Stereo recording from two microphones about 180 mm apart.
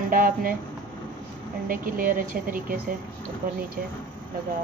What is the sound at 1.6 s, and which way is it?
A woman's voice, 50° right (ahead or behind).